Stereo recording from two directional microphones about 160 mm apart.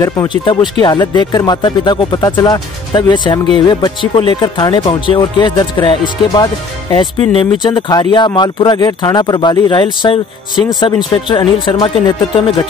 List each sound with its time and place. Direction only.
0.0 s speech: 20° left (ahead or behind)